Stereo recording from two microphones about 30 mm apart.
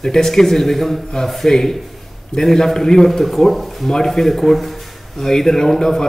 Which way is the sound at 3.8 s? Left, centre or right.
Centre.